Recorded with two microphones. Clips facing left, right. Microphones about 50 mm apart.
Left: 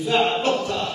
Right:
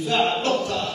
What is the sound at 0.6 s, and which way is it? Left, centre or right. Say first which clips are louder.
Music: left 1 dB; centre.